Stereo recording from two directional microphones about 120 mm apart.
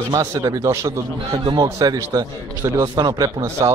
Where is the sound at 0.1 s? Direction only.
30° right (ahead or behind).